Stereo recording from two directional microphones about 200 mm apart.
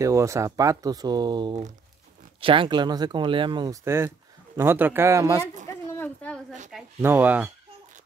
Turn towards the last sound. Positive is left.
turn(degrees=-10)  # may be behind; listen again after turning